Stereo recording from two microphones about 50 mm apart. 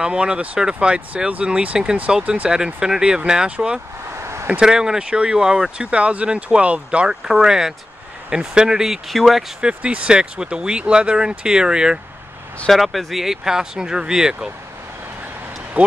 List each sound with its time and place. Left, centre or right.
0.0 s speech: centre
4.2 s a sound: right
4.5 s speech: centre
7.2 s speech: centre
9.8 s speech: right
12.6 s speech: centre